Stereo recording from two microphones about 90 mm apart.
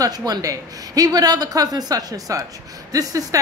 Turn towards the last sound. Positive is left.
turn(degrees=-40)  # may be behind; listen again after turning